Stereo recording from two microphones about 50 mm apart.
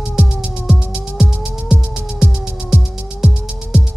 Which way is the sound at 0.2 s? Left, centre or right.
Centre.